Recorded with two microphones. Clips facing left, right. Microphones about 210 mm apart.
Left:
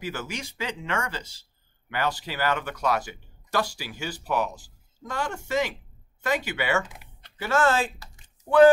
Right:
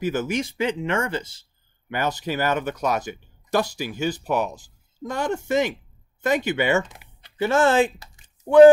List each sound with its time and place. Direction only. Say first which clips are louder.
0.0 s speech: right 9 dB; 20° right (ahead or behind)
6.9 s typing: even; centre (ahead or behind)
7.3 s speech: right 5 dB; 20° right (ahead or behind)